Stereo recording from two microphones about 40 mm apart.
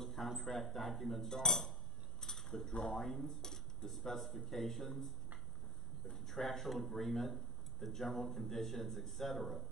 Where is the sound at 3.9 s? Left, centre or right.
Centre.